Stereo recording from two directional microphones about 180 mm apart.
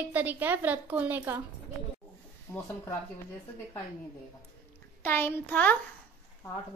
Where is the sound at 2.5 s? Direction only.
20° left (ahead or behind).